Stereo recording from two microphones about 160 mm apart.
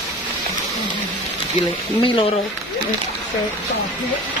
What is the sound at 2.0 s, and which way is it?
Speech, 35° left (ahead or behind).